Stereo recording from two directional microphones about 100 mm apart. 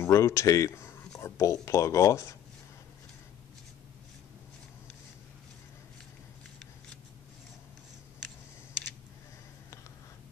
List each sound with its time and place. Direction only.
0.0 s speech: 30° left (ahead or behind)